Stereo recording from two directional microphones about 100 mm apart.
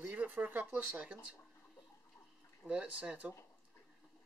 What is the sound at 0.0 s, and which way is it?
Speech, 20° right (ahead or behind).